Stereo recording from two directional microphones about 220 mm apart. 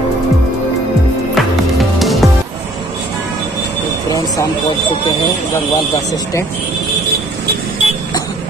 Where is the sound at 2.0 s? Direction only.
Centre (ahead or behind).